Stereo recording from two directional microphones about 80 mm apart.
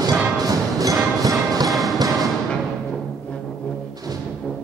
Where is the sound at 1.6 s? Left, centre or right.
Centre.